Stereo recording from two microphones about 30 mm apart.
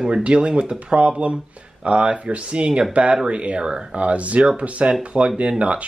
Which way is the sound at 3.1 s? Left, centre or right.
Right.